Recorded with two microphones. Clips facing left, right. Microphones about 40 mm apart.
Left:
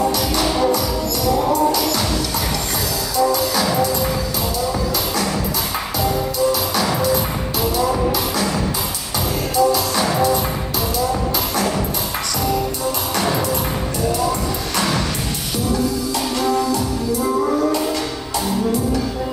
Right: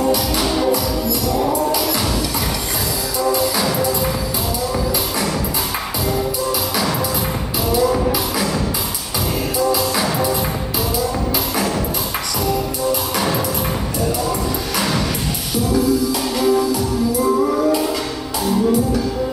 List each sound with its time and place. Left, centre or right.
0.0 s music: centre
9.7 s music: centre
16.1 s music: centre